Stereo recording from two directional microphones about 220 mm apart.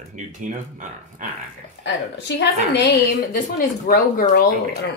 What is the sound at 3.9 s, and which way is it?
Speech, 40° left (ahead or behind).